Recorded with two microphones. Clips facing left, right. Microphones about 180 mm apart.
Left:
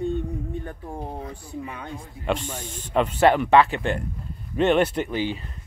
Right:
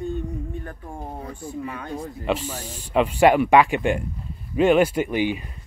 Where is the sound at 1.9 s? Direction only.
45° right (ahead or behind).